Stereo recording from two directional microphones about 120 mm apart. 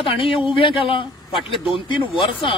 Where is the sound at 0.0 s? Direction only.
50° left (ahead or behind).